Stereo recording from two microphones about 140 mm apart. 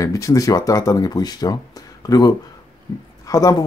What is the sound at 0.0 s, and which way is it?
A man's voice, 20° left (ahead or behind).